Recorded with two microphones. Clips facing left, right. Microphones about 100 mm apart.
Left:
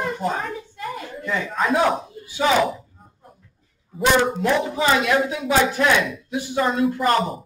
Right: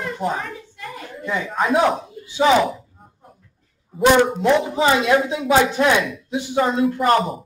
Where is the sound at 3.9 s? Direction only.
Centre (ahead or behind).